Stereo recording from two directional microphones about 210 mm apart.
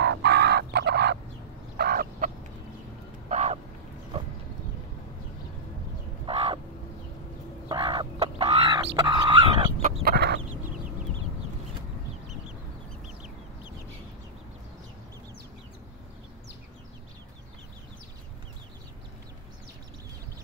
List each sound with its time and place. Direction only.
0.0 s fowl: 55° right (ahead or behind)
3.3 s crow: 35° right (ahead or behind)
6.2 s crow: 25° right (ahead or behind)
7.6 s fowl: 25° right (ahead or behind)
9.8 s chicken: 30° right (ahead or behind)
10.0 s chicken: 50° right (ahead or behind)